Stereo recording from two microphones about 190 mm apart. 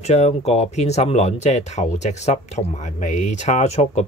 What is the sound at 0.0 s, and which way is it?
Speech, 35° left (ahead or behind).